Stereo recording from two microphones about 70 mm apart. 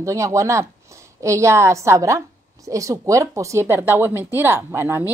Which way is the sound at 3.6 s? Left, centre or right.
Right.